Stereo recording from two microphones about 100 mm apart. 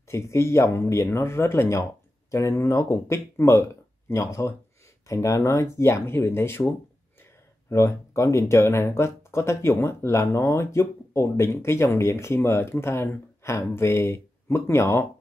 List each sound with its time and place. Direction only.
0.1 s speech: 25° left (ahead or behind)
7.7 s speech: 30° left (ahead or behind)